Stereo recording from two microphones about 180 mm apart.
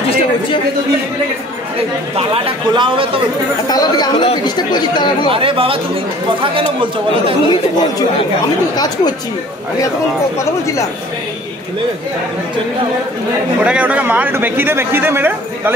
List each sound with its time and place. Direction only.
2.1 s a man's voice: 30° right (ahead or behind)
3.6 s speech: 20° left (ahead or behind)
5.3 s a man's voice: 30° right (ahead or behind)
8.7 s speech: 20° left (ahead or behind)
10.4 s speech: 15° left (ahead or behind)
13.7 s a man's voice: 5° right (ahead or behind)